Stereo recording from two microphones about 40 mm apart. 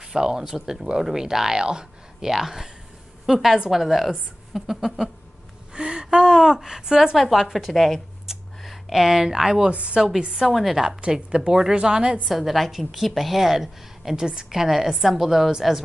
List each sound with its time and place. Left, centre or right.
0.1 s a woman's voice: centre
2.3 s a woman's voice: centre
5.8 s speech: right
7.2 s a woman's voice: centre
8.3 s a sound: centre
8.6 s speech: centre
9.7 s a woman's voice: right
10.3 s a woman's voice: centre
11.0 s a woman's voice: right
12.3 s a woman's voice: centre
14.1 s a woman's voice: centre